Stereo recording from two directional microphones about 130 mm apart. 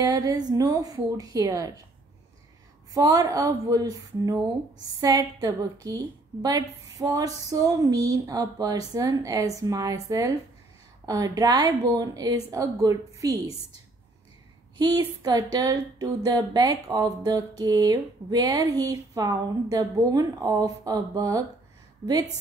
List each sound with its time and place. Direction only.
0.0 s a woman's voice: 30° right (ahead or behind)
2.9 s a woman's voice: 25° right (ahead or behind)
14.8 s a woman's voice: 30° right (ahead or behind)